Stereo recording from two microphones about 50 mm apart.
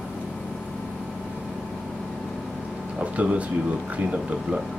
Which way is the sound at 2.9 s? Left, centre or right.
Right.